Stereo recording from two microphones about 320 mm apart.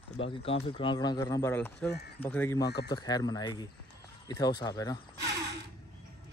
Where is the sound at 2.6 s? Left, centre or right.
Left.